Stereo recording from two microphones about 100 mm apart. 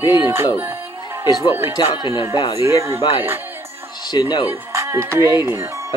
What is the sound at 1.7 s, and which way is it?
Speech, 50° left (ahead or behind).